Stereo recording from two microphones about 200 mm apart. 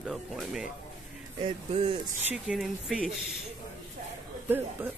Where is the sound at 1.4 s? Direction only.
25° right (ahead or behind).